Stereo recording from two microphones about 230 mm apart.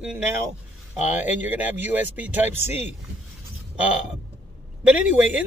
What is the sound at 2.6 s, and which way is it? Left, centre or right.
Speech, left.